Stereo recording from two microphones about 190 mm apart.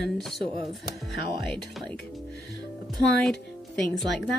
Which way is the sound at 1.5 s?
Centre (ahead or behind).